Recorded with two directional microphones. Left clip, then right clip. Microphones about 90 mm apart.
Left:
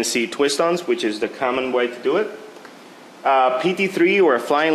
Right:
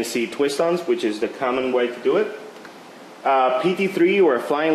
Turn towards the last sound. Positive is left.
turn(degrees=20)  # may be behind; listen again after turning